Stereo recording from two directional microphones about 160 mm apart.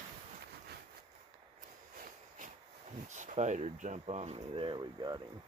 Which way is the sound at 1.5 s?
55° right (ahead or behind).